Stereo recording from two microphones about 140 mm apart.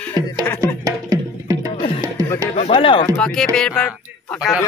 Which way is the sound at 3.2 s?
5° left (ahead or behind).